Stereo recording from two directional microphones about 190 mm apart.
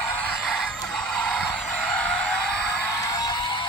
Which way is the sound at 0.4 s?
Centre (ahead or behind).